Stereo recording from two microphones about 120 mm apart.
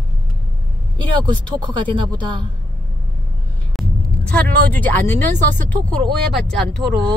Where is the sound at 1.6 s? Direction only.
40° right (ahead or behind).